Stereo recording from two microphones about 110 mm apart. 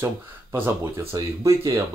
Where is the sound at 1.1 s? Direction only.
30° right (ahead or behind).